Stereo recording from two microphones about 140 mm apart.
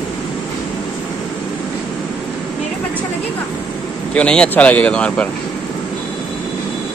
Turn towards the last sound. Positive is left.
turn(degrees=10)  # may be behind; listen again after turning